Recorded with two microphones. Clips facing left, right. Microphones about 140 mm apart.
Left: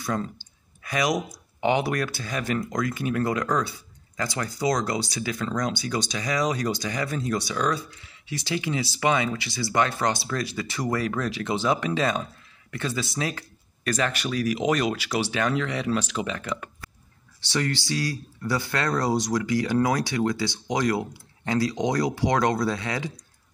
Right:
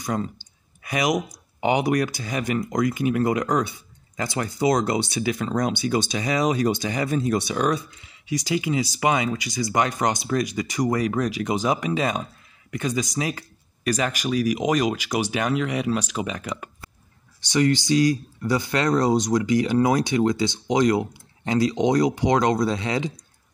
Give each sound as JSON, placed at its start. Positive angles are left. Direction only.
{"t": 0.0, "sound": "speech", "side_deg": -15}